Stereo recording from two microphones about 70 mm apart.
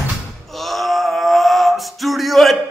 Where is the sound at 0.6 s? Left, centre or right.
Centre.